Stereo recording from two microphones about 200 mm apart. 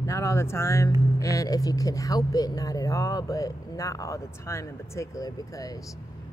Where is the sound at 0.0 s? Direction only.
15° left (ahead or behind).